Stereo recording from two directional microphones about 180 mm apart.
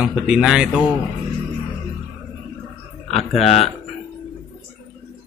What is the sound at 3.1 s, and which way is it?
Speech, 35° left (ahead or behind).